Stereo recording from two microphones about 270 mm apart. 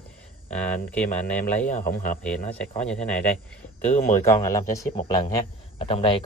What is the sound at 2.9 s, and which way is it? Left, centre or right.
Speech, centre.